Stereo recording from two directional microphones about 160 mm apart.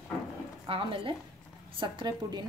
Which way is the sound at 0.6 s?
35° right (ahead or behind).